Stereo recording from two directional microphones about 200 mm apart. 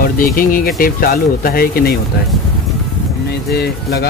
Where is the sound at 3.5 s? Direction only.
50° left (ahead or behind).